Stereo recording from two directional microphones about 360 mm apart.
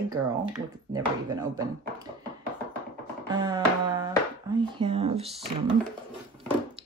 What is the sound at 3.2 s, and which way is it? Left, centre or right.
Speech, centre.